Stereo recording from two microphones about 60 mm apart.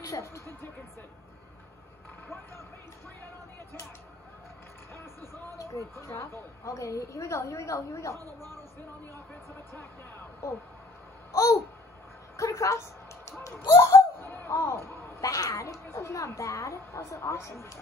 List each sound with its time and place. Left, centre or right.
0.0 s speech: left
5.6 s a woman's voice: left
11.3 s a woman's voice: left
13.4 s a sound: left
13.9 s a sound: left
15.2 s a woman's voice: left